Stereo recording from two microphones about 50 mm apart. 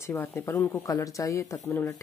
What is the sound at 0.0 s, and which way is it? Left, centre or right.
Speech, left.